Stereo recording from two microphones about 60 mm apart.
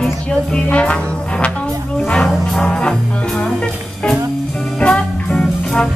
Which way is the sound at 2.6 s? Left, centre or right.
Centre.